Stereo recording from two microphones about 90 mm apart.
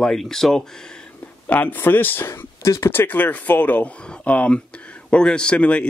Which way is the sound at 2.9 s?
20° left (ahead or behind).